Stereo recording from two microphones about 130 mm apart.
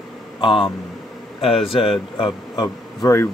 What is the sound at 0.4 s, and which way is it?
A man's voice, 40° left (ahead or behind).